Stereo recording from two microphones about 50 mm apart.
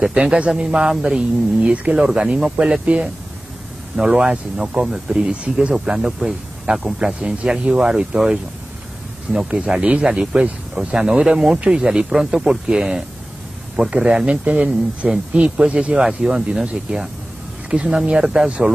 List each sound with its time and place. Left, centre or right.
0.1 s speech: centre
2.8 s speech: right
3.9 s speech: centre
7.2 s speech: right
9.3 s speech: centre
14.0 s speech: centre
16.0 s speech: centre
17.6 s speech: centre